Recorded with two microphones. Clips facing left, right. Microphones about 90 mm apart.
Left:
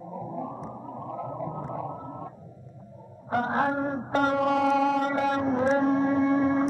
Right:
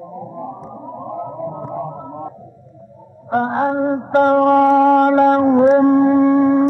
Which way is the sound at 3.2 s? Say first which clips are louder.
Right 8 dB; 40° right (ahead or behind).